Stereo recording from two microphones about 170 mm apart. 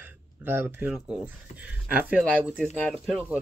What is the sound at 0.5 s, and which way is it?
Speech, 15° right (ahead or behind).